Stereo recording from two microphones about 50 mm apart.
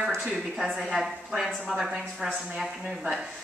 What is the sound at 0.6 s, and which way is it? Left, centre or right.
Speech, centre.